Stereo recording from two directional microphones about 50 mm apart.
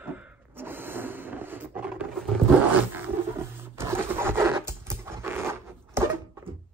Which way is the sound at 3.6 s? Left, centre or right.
Right.